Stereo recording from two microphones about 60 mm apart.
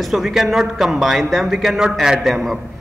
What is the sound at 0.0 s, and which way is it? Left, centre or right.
A man's voice, centre.